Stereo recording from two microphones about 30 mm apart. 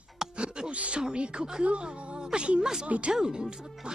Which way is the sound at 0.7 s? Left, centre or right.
Right.